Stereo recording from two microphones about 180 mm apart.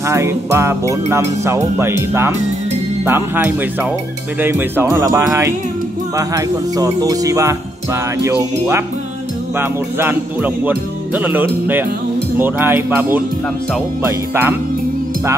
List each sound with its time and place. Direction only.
0.0 s speech: 15° right (ahead or behind)